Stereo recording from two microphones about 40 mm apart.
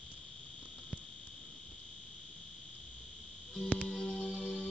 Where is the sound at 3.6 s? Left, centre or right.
Left.